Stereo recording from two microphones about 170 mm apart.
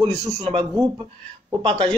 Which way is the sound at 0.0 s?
35° right (ahead or behind).